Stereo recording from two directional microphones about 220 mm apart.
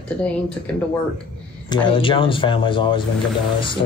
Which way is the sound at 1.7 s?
20° left (ahead or behind).